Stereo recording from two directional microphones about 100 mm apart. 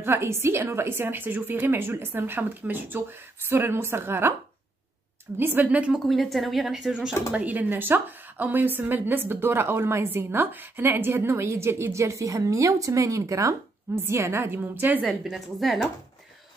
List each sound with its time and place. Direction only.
0.0 s a woman's voice: 25° right (ahead or behind)
5.4 s a woman's voice: 20° right (ahead or behind)
6.0 s a woman's voice: centre (ahead or behind)
7.3 s a woman's voice: 15° right (ahead or behind)
15.0 s a woman's voice: centre (ahead or behind)